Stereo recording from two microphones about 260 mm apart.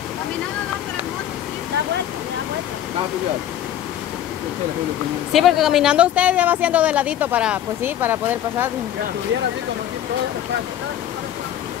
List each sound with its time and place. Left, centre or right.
5.3 s speech: centre